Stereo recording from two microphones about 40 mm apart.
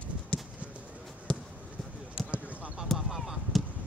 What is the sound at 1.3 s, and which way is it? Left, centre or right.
Basketball bounce, centre.